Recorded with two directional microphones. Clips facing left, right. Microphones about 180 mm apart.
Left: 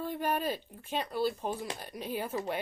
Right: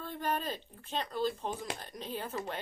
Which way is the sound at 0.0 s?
10° left (ahead or behind).